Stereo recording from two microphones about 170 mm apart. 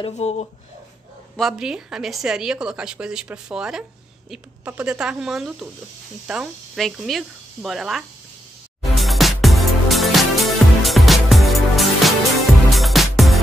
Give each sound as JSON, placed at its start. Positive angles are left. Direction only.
{"t": 0.0, "sound": "speech", "side_deg": 40}
{"t": 1.3, "sound": "a woman's voice", "side_deg": 0}
{"t": 8.9, "sound": "music", "side_deg": 0}